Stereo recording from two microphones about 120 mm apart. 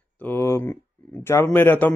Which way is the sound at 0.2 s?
20° left (ahead or behind).